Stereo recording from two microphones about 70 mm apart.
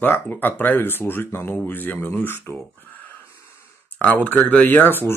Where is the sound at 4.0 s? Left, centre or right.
Left.